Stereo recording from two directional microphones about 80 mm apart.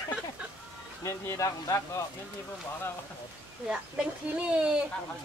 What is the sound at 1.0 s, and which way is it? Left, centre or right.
Speech, left.